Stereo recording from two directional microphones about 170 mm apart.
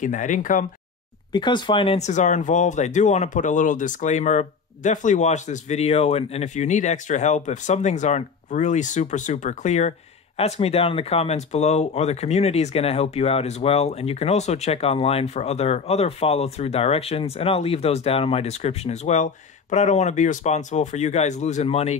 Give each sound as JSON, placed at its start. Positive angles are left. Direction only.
{"t": 0.0, "sound": "speech", "side_deg": 50}
{"t": 1.3, "sound": "speech", "side_deg": 25}